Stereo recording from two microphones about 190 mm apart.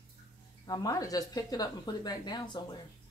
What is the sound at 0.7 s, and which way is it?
Speech, 20° left (ahead or behind).